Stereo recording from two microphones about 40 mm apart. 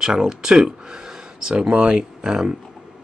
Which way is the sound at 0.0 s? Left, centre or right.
Centre.